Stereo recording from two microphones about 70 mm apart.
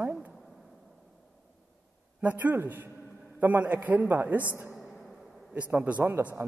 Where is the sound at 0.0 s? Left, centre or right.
Right.